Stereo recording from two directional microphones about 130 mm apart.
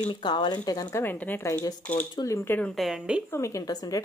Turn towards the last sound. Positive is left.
turn(degrees=30)  # may be behind; listen again after turning